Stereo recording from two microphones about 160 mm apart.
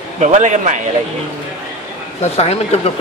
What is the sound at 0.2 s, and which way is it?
Speech, 50° right (ahead or behind).